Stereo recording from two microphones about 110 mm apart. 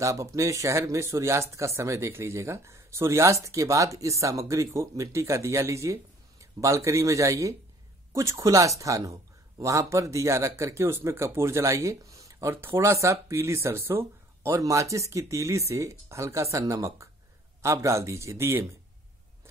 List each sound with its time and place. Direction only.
0.0 s speech: 30° right (ahead or behind)